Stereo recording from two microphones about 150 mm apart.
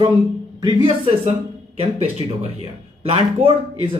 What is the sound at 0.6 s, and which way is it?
Speech, 30° right (ahead or behind).